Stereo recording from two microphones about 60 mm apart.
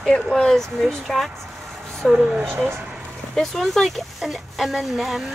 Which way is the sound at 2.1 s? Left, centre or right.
Centre.